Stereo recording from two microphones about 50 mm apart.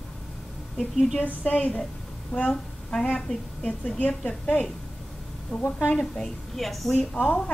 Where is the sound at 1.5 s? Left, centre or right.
Left.